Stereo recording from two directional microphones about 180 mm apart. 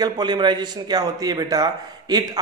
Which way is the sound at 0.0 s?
25° right (ahead or behind).